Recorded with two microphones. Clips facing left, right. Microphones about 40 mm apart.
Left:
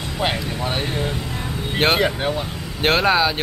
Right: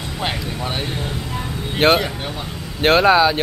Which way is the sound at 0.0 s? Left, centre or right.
Centre.